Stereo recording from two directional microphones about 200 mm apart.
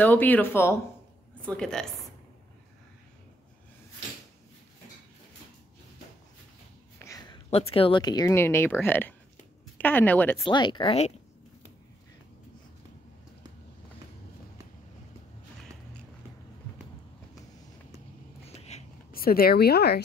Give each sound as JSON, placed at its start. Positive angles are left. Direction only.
{"t": 0.0, "sound": "a woman's voice", "side_deg": 10}
{"t": 7.0, "sound": "a woman's voice", "side_deg": 20}
{"t": 10.4, "sound": "speech", "side_deg": 20}
{"t": 18.6, "sound": "a sound", "side_deg": 35}
{"t": 19.1, "sound": "speech", "side_deg": 50}